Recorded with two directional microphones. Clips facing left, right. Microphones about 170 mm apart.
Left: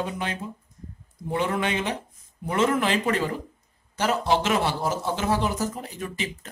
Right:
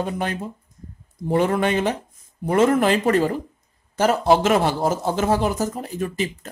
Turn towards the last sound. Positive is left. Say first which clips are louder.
# right 7 dB
turn(degrees=-40)  # may be behind; listen again after turning